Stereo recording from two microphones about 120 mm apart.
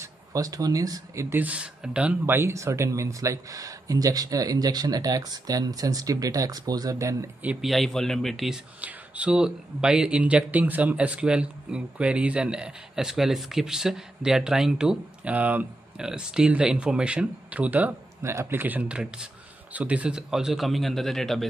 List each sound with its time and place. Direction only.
0.0 s speech: 30° right (ahead or behind)
1.3 s speech: 10° right (ahead or behind)
7.6 s a man's voice: centre (ahead or behind)
8.8 s a man's voice: 10° right (ahead or behind)